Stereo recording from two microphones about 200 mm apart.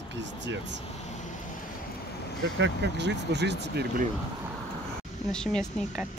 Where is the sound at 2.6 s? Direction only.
60° right (ahead or behind).